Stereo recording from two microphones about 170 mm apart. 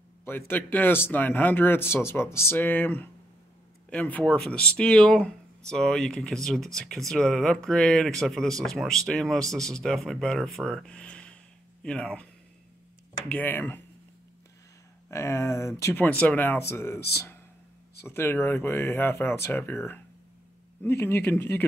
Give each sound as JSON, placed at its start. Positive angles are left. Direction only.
{"t": 0.2, "sound": "speech", "side_deg": 10}
{"t": 13.3, "sound": "speech", "side_deg": 10}
{"t": 15.0, "sound": "speech", "side_deg": 15}